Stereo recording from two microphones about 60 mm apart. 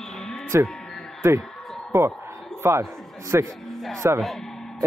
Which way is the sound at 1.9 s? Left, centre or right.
Right.